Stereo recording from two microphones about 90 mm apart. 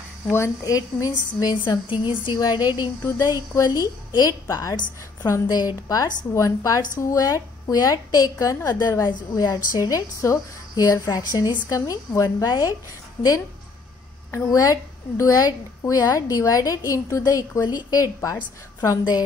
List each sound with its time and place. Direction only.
0.3 s a woman's voice: 35° left (ahead or behind)
1.7 s a woman's voice: 60° left (ahead or behind); by 5.6 s 35° left (ahead or behind)
5.6 s a woman's voice: 45° left (ahead or behind)
14.3 s a woman's voice: 40° left (ahead or behind)